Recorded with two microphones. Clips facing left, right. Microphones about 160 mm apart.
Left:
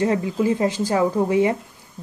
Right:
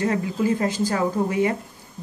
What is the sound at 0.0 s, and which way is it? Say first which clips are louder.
Speech: left 2 dB; 25° left (ahead or behind).